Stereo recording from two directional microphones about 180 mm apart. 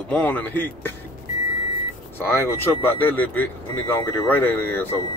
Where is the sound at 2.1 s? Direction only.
10° left (ahead or behind).